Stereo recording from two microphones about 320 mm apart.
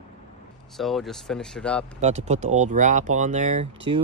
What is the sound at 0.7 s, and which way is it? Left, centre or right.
Speech, centre.